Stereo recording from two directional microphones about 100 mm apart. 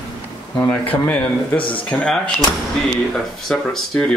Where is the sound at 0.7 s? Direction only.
15° left (ahead or behind).